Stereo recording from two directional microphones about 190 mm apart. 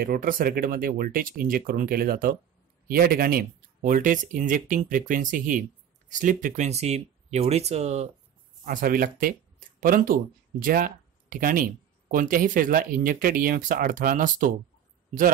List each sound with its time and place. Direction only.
0.0 s speech: 50° right (ahead or behind)
8.6 s speech: 45° right (ahead or behind)